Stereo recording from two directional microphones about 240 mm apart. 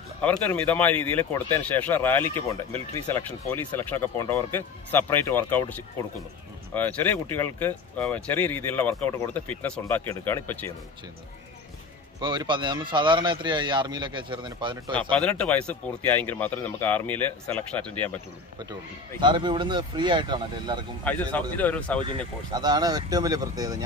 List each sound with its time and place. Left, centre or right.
0.2 s speech: centre
12.2 s speech: centre
15.1 s speech: centre
18.7 s speech: centre
21.0 s speech: centre
22.0 s speech: centre